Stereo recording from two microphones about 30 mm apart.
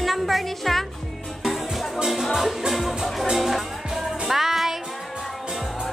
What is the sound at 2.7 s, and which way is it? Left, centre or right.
Speech, centre.